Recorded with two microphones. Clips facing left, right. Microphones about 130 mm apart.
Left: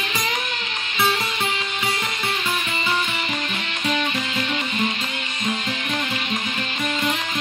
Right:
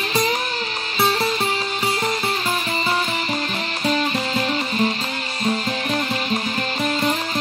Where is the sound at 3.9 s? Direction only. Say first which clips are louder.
Right 3 dB; 35° right (ahead or behind).